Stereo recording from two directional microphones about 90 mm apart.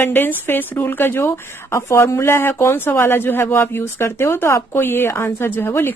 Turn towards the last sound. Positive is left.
turn(degrees=25)  # may be behind; listen again after turning